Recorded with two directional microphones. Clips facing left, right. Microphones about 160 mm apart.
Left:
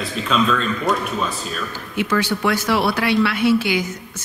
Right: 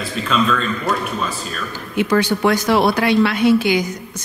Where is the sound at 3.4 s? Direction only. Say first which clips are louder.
Right 3 dB; 15° right (ahead or behind).